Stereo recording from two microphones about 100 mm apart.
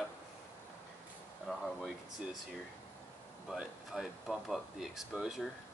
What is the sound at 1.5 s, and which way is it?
Speech, 5° left (ahead or behind).